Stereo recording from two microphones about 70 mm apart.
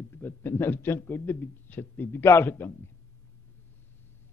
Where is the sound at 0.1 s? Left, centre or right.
Left.